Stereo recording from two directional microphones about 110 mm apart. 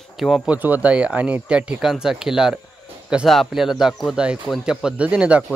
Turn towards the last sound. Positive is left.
turn(degrees=-10)  # may be behind; listen again after turning